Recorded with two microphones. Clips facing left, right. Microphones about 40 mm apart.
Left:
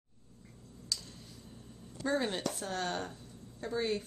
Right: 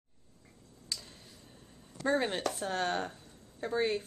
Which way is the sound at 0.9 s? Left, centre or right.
Right.